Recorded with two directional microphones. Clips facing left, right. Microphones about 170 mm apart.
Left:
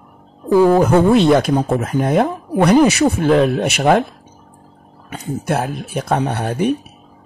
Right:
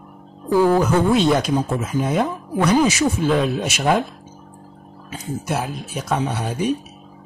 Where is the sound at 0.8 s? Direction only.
55° left (ahead or behind).